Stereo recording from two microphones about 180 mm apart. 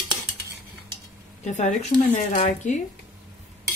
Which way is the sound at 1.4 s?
40° left (ahead or behind).